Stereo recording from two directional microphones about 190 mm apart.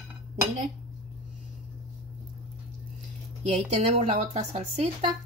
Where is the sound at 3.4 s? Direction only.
35° right (ahead or behind).